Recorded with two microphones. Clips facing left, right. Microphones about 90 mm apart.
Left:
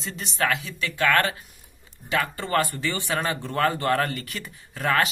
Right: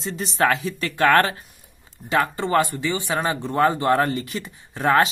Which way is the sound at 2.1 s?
20° right (ahead or behind).